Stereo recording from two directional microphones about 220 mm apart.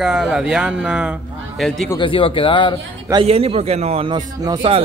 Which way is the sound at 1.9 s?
20° left (ahead or behind).